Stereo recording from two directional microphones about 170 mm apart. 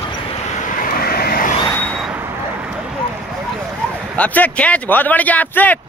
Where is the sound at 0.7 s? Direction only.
55° left (ahead or behind).